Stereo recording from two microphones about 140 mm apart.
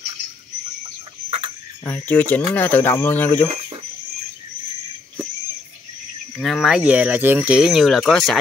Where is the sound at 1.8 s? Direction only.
15° left (ahead or behind).